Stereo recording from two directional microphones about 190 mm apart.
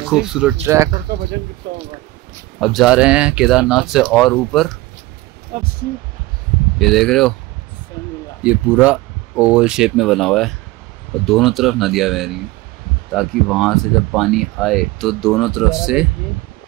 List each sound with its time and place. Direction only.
0.1 s speech: 5° right (ahead or behind)
1.6 s speech: 60° right (ahead or behind)
2.6 s speech: centre (ahead or behind)
5.5 s speech: 45° right (ahead or behind)
6.8 s speech: centre (ahead or behind)
8.4 s speech: 5° right (ahead or behind)